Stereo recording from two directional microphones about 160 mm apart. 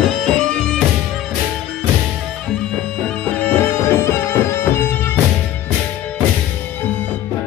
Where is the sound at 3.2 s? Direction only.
10° left (ahead or behind).